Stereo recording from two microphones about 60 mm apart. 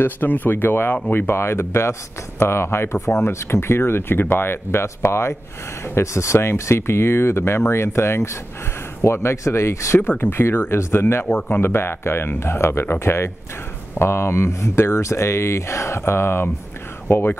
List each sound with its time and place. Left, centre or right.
0.0 s speech: left
9.9 s speech: left
11.2 s speech: left